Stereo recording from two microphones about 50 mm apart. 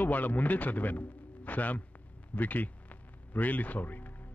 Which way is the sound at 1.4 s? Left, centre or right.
Left.